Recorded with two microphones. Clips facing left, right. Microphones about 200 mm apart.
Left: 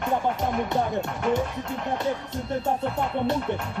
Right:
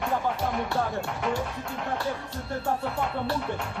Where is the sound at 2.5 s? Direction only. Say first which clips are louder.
Left 3 dB; 20° left (ahead or behind).